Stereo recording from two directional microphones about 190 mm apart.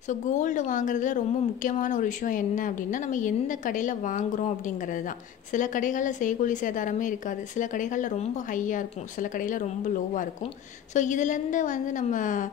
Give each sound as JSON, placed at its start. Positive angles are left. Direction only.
{"t": 0.1, "sound": "a woman's voice", "side_deg": 40}
{"t": 11.0, "sound": "a woman's voice", "side_deg": 40}